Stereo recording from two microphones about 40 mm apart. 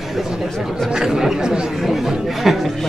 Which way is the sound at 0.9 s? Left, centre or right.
Centre.